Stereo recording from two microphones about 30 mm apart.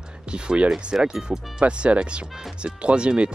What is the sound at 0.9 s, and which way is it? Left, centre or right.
Speech, right.